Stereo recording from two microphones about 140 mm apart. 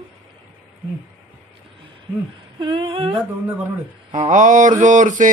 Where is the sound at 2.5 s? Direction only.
40° right (ahead or behind).